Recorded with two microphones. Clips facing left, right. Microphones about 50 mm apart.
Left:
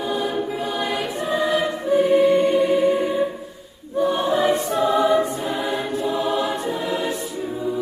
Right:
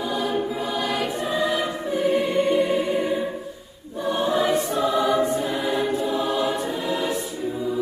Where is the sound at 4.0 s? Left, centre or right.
Left.